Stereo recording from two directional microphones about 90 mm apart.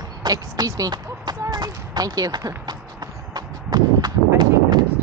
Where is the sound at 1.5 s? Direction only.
50° right (ahead or behind).